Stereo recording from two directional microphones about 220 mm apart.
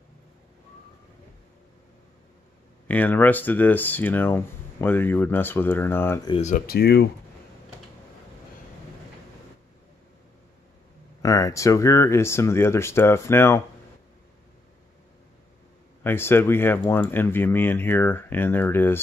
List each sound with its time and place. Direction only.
2.9 s speech: 10° left (ahead or behind)
6.3 s speech: 35° left (ahead or behind)
11.2 s speech: 15° left (ahead or behind)
16.0 s speech: 10° left (ahead or behind)